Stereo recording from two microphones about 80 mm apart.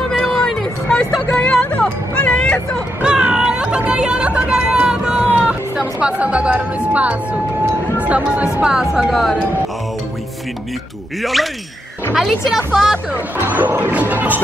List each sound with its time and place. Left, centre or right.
0.1 s music: centre
3.0 s music: centre
5.2 s speech: centre
12.2 s speech: centre
13.1 s speech: right